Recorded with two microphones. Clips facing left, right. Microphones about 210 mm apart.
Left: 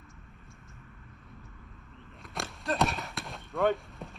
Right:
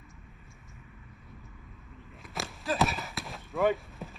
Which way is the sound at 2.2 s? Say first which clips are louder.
Even; centre (ahead or behind).